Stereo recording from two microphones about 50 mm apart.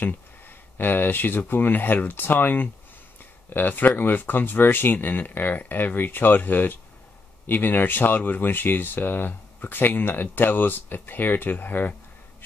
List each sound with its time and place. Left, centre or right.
0.7 s speech: left